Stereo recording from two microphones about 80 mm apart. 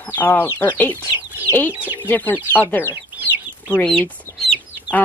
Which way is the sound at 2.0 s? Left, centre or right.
Left.